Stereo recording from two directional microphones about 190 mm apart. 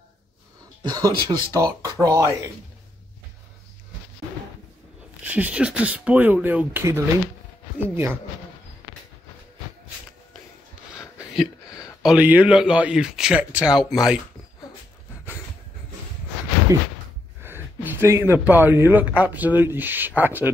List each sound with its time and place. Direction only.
0.9 s speech: 20° right (ahead or behind)
5.2 s speech: 10° right (ahead or behind)
11.0 s a sound: 5° right (ahead or behind)
12.0 s speech: 5° right (ahead or behind)
16.7 s speech: 15° right (ahead or behind)